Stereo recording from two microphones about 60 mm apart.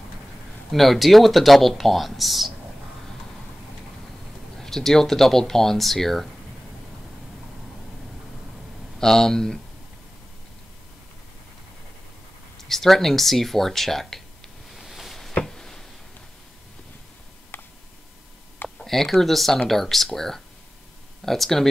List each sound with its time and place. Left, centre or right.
0.7 s speech: centre
4.6 s speech: centre
9.0 s speech: centre
12.5 s speech: centre
14.8 s a sound: centre
17.5 s a sound: left
18.8 s speech: centre